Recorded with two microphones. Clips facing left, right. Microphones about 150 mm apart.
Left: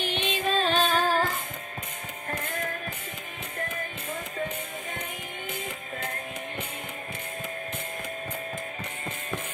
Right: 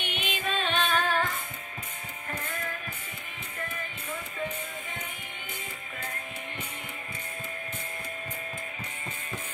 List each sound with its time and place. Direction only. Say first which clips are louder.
0.0 s music: left 5 dB; 30° left (ahead or behind)